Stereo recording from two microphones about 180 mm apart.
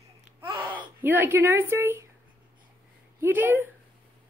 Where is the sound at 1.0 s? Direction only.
10° right (ahead or behind).